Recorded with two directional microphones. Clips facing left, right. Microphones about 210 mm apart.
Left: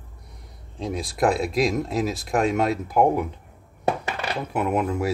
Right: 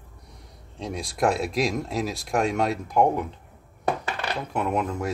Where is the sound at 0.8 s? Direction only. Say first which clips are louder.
Left 2 dB; centre (ahead or behind).